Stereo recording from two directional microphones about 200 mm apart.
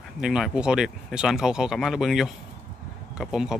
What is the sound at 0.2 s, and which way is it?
Speech, 5° right (ahead or behind).